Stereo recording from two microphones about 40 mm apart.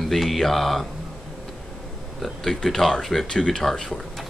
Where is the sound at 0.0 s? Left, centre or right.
Centre.